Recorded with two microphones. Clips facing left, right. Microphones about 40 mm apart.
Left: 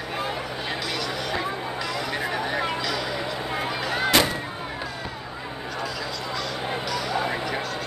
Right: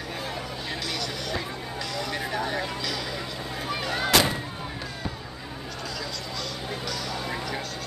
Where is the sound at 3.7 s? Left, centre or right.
Centre.